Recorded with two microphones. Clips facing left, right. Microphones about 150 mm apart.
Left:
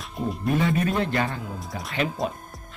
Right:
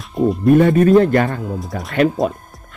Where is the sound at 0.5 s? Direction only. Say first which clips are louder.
Right 13 dB; 50° right (ahead or behind).